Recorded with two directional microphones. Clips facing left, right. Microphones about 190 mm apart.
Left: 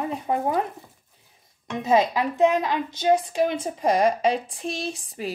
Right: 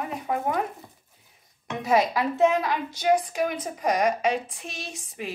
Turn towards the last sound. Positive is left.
turn(degrees=35)  # may be behind; listen again after turning